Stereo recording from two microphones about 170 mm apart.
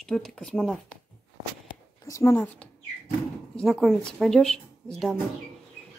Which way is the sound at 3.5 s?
Centre (ahead or behind).